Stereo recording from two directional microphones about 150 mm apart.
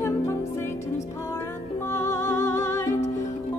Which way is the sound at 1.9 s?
20° left (ahead or behind).